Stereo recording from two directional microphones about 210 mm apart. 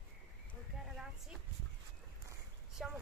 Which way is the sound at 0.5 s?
Centre (ahead or behind).